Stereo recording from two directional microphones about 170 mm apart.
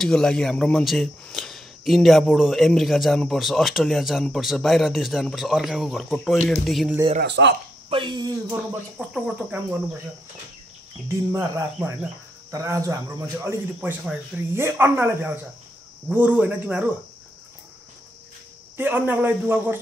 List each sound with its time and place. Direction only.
0.0 s a man's voice: 5° left (ahead or behind)
7.2 s speech: 90° right
7.9 s speech: 25° right (ahead or behind)
8.9 s speech: 5° right (ahead or behind)
11.1 s speech: 15° right (ahead or behind)
18.8 s speech: 10° right (ahead or behind)